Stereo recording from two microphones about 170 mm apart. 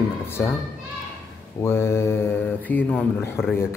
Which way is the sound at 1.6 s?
15° left (ahead or behind).